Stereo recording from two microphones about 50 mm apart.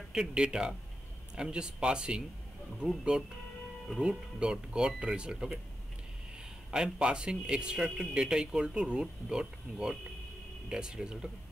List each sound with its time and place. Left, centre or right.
0.1 s speech: centre
4.0 s speech: centre
6.7 s speech: centre